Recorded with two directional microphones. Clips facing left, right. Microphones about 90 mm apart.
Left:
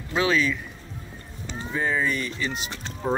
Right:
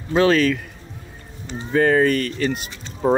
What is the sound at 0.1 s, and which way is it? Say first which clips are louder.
Speech: right 7 dB; 45° right (ahead or behind).